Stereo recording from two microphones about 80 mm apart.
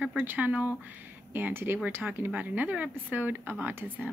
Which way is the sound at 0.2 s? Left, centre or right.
Right.